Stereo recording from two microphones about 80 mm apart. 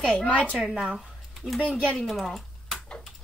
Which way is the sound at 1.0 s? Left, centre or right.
Centre.